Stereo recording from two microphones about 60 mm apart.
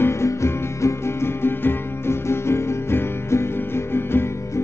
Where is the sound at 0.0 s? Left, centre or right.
Left.